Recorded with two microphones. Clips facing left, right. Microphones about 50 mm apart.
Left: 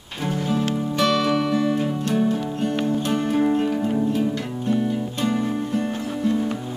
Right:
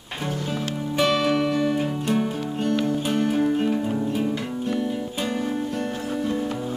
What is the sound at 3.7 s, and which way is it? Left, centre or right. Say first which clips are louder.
Music: left 2 dB; centre.